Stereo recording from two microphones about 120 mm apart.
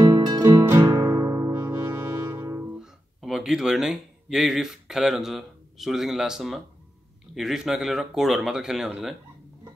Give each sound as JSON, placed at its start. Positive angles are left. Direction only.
{"t": 0.0, "sound": "music", "side_deg": -45}
{"t": 0.7, "sound": "music", "side_deg": -25}
{"t": 2.8, "sound": "speech", "side_deg": 0}